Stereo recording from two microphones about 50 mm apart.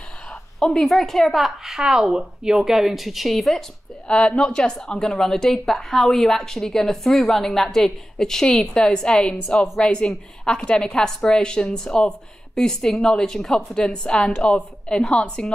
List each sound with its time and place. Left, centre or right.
0.6 s speech: centre
4.1 s a woman's voice: centre